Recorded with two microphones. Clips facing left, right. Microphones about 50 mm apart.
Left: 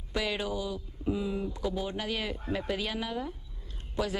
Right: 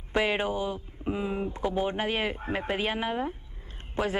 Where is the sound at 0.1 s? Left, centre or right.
Right.